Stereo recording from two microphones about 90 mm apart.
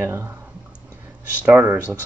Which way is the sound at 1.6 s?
20° right (ahead or behind).